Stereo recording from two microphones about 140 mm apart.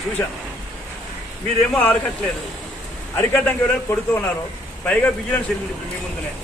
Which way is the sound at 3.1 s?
15° left (ahead or behind).